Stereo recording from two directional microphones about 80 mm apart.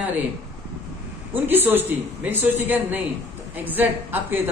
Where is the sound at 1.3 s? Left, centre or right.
Right.